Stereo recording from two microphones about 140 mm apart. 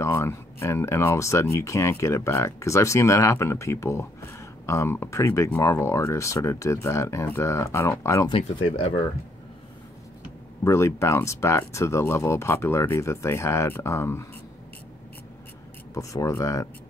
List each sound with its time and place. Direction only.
0.0 s speech: 20° left (ahead or behind)
8.3 s speech: 40° left (ahead or behind)
10.6 s speech: 20° left (ahead or behind)
15.9 s speech: 25° left (ahead or behind)